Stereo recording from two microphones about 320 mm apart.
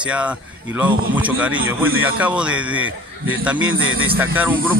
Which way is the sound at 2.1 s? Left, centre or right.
Centre.